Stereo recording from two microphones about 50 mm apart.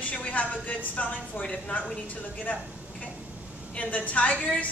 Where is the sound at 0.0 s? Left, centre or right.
Left.